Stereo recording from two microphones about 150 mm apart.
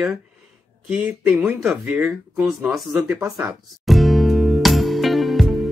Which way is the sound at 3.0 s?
20° right (ahead or behind).